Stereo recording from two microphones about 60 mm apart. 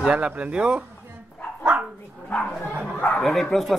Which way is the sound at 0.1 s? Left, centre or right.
Centre.